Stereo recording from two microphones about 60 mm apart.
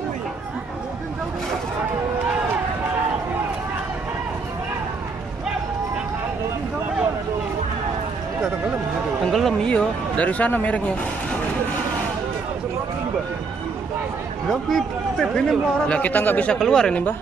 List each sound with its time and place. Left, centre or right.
9.2 s a sound: centre
9.7 s speech: centre
14.5 s speech: centre
15.3 s speech: centre
16.0 s speech: left
16.5 s speech: centre